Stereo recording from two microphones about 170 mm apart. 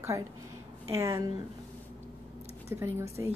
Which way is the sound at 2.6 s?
15° right (ahead or behind).